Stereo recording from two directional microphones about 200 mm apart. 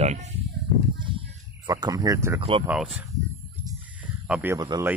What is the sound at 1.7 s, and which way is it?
Speech, 20° right (ahead or behind).